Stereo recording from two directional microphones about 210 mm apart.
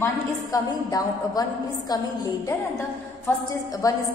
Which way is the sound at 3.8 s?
15° left (ahead or behind).